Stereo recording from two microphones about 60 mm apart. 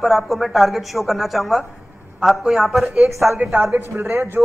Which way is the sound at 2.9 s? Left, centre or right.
Right.